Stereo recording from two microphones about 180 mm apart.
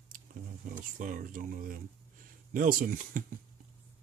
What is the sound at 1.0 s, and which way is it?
Speech, 45° right (ahead or behind).